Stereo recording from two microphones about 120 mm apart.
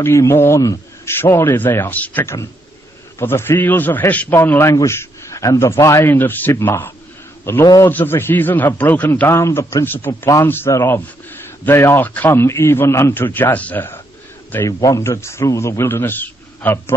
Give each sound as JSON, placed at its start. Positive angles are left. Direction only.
{"t": 0.0, "sound": "a man's voice", "side_deg": 25}
{"t": 7.6, "sound": "a man's voice", "side_deg": 30}
{"t": 7.9, "sound": "a man's voice", "side_deg": 20}
{"t": 14.7, "sound": "a man's voice", "side_deg": 30}